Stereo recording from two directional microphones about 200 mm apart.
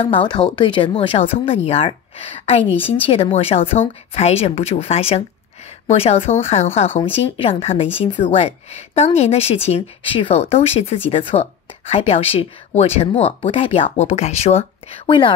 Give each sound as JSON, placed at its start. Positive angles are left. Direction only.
{"t": 0.0, "sound": "a woman's voice", "side_deg": 25}